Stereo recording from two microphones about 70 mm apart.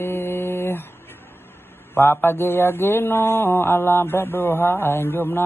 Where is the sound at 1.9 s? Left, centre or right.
Left.